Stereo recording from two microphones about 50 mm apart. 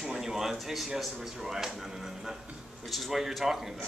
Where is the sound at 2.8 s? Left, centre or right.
Centre.